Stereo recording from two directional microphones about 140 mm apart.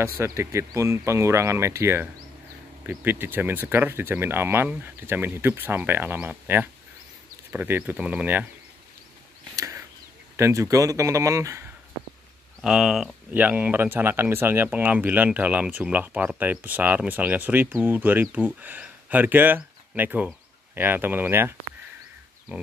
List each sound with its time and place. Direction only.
0.0 s speech: 20° right (ahead or behind)
9.6 s a sound: 20° right (ahead or behind)
10.3 s speech: 20° right (ahead or behind)
12.6 s speech: 5° right (ahead or behind)